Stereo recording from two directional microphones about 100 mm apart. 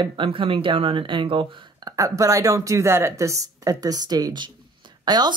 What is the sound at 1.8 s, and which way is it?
Speech, 35° right (ahead or behind).